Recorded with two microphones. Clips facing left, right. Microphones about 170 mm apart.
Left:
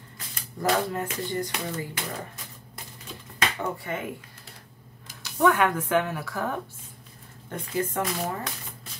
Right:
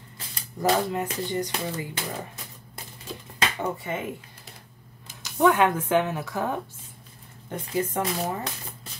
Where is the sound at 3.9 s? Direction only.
20° right (ahead or behind).